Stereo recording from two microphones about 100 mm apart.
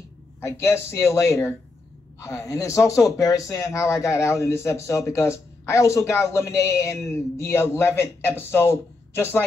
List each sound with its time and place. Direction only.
0.4 s a woman's voice: 25° left (ahead or behind)